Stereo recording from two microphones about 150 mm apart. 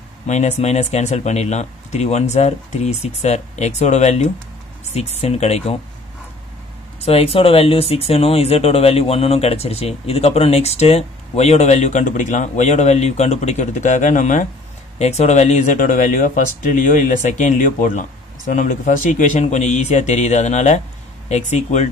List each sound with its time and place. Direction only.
0.3 s speech: 50° left (ahead or behind)
7.1 s speech: 40° left (ahead or behind)